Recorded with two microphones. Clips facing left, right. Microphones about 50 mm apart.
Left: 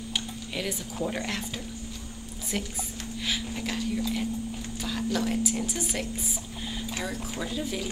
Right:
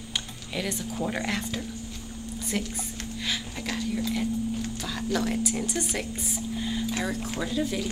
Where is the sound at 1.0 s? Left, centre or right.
Centre.